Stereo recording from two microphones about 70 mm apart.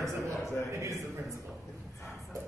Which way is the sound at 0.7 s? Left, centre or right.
Right.